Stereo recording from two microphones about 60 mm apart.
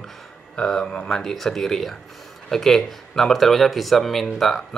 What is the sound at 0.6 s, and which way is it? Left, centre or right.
Speech, centre.